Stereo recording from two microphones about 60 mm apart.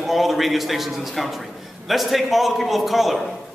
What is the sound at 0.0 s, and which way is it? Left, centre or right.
A man's voice, centre.